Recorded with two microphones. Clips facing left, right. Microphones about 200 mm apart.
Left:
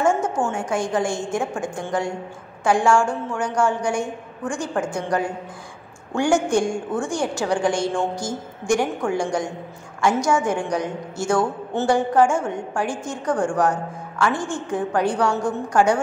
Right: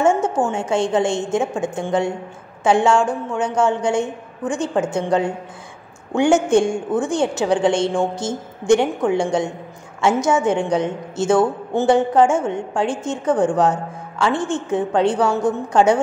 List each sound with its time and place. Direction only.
0.0 s a woman's voice: 25° right (ahead or behind)